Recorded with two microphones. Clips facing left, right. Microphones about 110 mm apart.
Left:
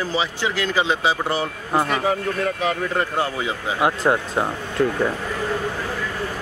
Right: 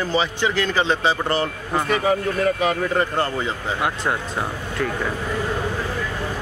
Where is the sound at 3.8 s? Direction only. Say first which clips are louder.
Left 6 dB; 25° left (ahead or behind).